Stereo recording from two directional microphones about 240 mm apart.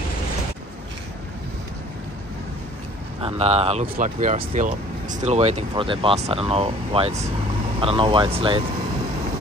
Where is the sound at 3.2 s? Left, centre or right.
Right.